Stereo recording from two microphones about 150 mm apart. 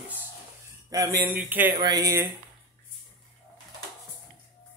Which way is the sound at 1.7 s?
25° right (ahead or behind).